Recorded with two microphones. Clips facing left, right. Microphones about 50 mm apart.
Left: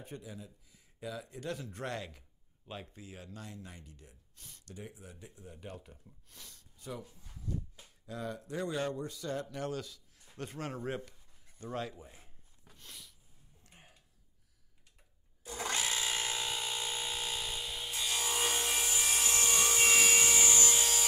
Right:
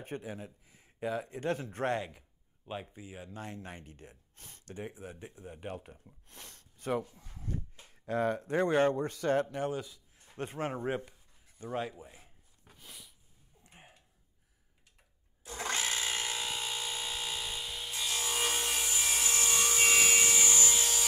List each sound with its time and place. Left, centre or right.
0.0 s speech: right
2.0 s speech: centre
3.3 s speech: right
7.3 s music: right
7.9 s a man's voice: right
9.5 s a man's voice: right
12.7 s a sound: centre
13.7 s a sound: right
15.4 s a sound: right
16.3 s tools: centre
19.7 s wood: centre
20.3 s wood: centre
20.7 s rub: centre